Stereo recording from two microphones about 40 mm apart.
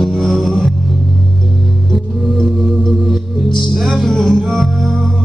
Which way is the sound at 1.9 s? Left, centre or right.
Centre.